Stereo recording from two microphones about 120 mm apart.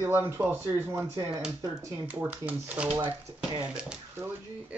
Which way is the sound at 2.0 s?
15° right (ahead or behind).